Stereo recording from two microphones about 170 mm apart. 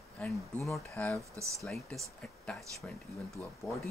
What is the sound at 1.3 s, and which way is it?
Speech, 20° right (ahead or behind).